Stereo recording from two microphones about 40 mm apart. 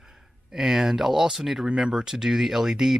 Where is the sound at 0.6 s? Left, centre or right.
Centre.